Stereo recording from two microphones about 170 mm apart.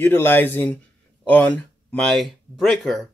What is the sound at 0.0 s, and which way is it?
Speech, 10° left (ahead or behind).